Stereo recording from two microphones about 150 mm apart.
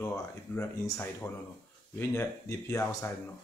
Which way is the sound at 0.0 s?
20° left (ahead or behind).